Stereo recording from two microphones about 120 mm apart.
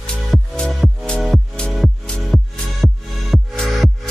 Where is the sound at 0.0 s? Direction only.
5° left (ahead or behind).